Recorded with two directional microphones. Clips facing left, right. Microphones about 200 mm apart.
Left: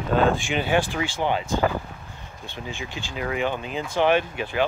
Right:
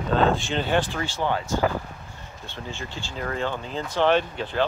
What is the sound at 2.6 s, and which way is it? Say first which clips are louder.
Speech: left 1 dB; 15° left (ahead or behind).